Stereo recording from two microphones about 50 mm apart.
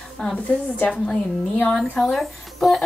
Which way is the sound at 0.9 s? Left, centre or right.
Centre.